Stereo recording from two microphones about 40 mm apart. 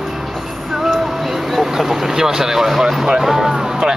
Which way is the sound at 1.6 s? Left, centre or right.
Centre.